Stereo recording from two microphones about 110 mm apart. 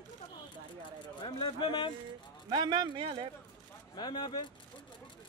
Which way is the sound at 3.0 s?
50° right (ahead or behind).